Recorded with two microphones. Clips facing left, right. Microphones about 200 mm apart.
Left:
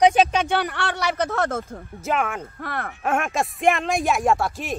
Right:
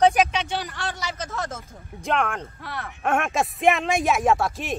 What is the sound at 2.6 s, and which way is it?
Speech, 55° left (ahead or behind).